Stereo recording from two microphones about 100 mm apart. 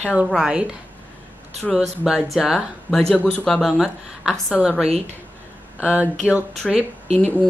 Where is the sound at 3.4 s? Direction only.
Centre (ahead or behind).